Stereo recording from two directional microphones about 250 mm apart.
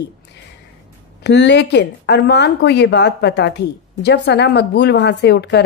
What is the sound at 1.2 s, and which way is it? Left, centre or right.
A woman's voice, left.